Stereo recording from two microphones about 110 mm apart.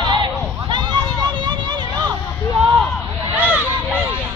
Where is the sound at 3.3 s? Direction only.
10° right (ahead or behind).